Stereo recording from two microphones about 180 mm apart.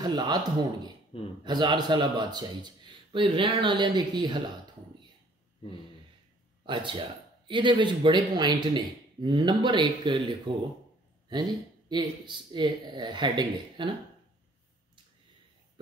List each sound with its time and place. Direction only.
0.0 s a man's voice: 20° right (ahead or behind)
6.6 s a man's voice: 25° right (ahead or behind)